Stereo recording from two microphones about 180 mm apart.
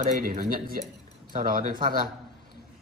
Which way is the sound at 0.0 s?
55° right (ahead or behind).